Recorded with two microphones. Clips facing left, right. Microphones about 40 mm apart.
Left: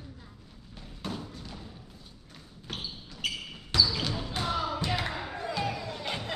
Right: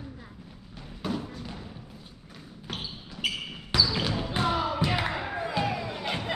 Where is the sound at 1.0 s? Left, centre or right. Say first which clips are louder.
Right 5 dB; centre.